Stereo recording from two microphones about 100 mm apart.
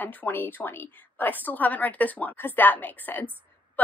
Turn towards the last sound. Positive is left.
turn(degrees=20)  # may be behind; listen again after turning